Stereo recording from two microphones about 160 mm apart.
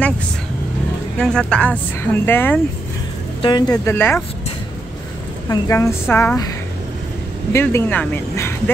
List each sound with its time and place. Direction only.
1.1 s speech: 5° left (ahead or behind)
3.4 s speech: 25° left (ahead or behind)
3.8 s speech: 15° left (ahead or behind)
5.5 s speech: 15° left (ahead or behind)
7.5 s speech: 15° left (ahead or behind)